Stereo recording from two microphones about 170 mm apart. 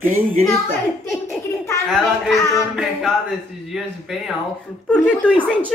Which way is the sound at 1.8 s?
Centre (ahead or behind).